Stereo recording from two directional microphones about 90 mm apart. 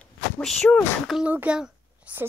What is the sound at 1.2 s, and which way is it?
A child's voice, 15° right (ahead or behind).